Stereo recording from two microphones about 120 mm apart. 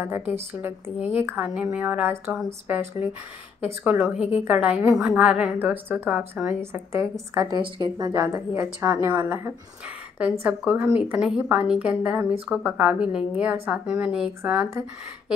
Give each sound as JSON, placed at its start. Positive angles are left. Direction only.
{"t": 0.3, "sound": "a woman's voice", "side_deg": -20}